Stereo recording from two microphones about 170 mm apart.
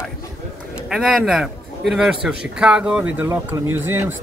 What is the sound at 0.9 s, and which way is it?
A man's voice, centre (ahead or behind).